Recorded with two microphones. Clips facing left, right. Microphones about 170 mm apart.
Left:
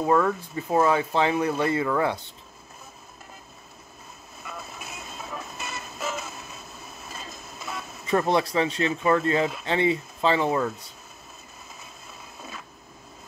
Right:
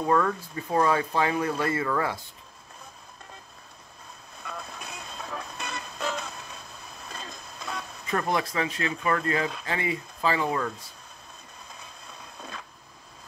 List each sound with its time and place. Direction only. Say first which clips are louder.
0.0 s speech: left 2 dB; 5° left (ahead or behind)
0.9 s speech: left 2 dB; 20° left (ahead or behind)
4.4 s music: even; 5° left (ahead or behind)
8.1 s speech: left 5 dB; 25° left (ahead or behind)
11.7 s a sound: even; 5° left (ahead or behind)